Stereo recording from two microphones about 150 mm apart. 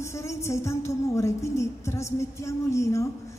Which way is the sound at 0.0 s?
20° left (ahead or behind).